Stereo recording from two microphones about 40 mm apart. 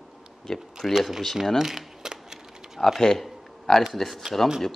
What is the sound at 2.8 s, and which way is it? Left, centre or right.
Speech, centre.